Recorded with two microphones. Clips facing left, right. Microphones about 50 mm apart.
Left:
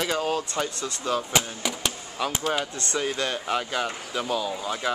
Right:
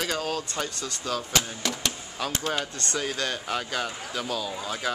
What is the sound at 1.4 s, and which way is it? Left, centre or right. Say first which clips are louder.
Speech: left 1 dB; centre.